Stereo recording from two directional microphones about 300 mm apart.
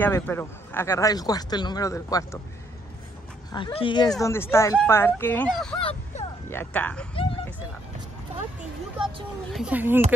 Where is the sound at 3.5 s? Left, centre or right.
Centre.